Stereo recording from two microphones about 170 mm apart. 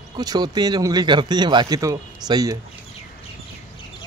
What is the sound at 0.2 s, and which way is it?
Speech, 25° right (ahead or behind).